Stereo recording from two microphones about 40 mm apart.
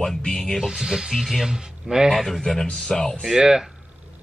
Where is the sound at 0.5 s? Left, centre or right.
Centre.